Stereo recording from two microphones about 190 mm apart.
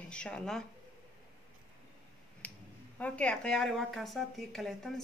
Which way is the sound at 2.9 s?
5° left (ahead or behind).